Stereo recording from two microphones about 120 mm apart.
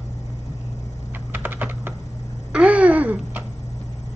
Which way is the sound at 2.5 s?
10° right (ahead or behind).